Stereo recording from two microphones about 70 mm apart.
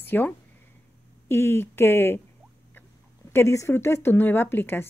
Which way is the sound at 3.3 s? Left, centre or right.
Left.